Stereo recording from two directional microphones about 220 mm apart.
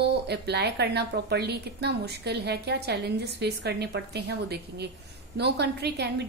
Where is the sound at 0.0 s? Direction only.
50° right (ahead or behind).